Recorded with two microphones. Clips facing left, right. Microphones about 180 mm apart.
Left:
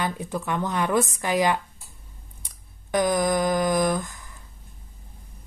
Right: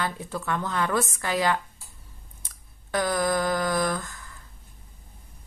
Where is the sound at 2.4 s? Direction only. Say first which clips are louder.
Left 2 dB; 15° left (ahead or behind).